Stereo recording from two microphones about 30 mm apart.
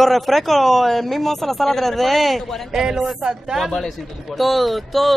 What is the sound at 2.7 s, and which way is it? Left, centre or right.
Speech, centre.